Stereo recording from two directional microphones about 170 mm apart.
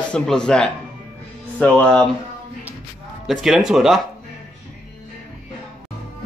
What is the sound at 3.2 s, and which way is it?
Speech, centre (ahead or behind).